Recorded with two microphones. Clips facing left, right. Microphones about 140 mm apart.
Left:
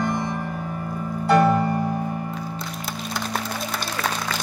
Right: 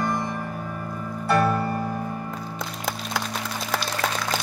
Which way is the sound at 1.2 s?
20° left (ahead or behind).